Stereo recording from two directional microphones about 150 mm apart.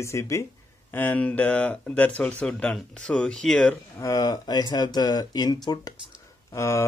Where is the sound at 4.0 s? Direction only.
25° left (ahead or behind).